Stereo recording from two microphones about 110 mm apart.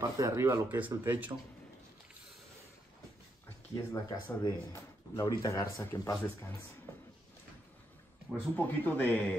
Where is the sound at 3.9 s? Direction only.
35° left (ahead or behind).